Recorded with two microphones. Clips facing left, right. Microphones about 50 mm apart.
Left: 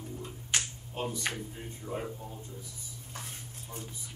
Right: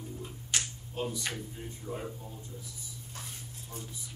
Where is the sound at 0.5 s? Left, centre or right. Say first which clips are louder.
Left 2 dB; left.